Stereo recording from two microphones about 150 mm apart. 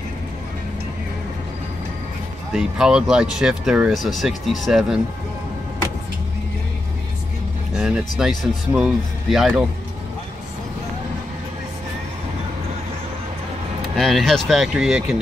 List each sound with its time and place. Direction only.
2.5 s speech: 5° right (ahead or behind)
7.7 s speech: 5° right (ahead or behind)
13.9 s speech: centre (ahead or behind)